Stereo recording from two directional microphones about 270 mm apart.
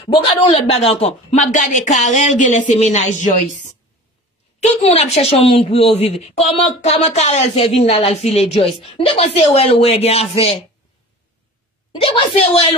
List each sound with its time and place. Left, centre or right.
0.1 s speech: left
11.9 s speech: left